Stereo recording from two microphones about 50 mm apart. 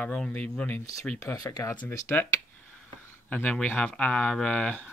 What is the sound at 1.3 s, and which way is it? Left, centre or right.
Speech, left.